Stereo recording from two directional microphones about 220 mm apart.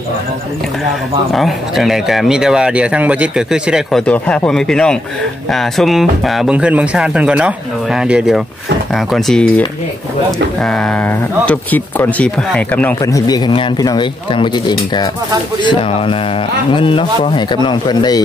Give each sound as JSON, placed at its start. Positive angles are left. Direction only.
{"t": 1.3, "sound": "speech", "side_deg": 0}
{"t": 10.6, "sound": "a man's voice", "side_deg": 5}